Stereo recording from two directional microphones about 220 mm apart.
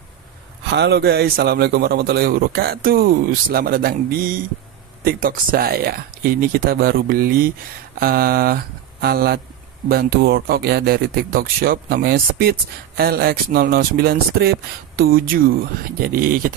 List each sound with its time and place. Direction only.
0.7 s speech: 50° right (ahead or behind)